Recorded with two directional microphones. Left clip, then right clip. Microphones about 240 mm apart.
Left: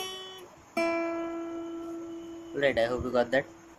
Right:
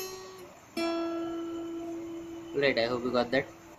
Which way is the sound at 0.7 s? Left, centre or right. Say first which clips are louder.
Left 3 dB; centre.